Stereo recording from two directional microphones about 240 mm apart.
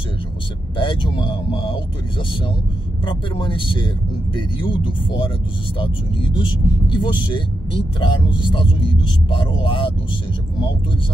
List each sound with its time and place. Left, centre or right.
0.7 s speech: centre
3.1 s speech: centre